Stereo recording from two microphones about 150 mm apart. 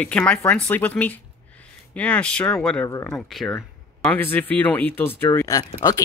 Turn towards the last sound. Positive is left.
turn(degrees=25)  # may be behind; listen again after turning